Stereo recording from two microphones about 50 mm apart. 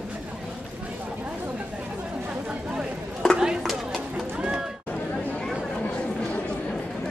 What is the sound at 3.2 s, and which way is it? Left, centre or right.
Chop, centre.